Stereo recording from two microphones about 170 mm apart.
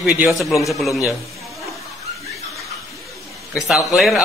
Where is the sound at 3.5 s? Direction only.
Centre (ahead or behind).